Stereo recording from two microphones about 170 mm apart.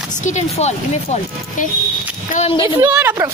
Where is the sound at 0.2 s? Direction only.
45° left (ahead or behind).